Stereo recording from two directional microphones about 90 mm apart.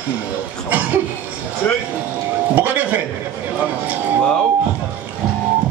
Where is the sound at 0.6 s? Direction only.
20° right (ahead or behind).